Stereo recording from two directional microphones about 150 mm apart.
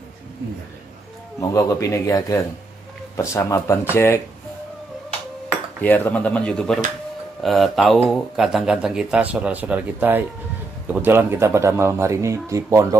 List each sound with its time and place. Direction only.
1.4 s a man's voice: 20° left (ahead or behind)
5.8 s speech: 10° left (ahead or behind); by 12.8 s 20° right (ahead or behind)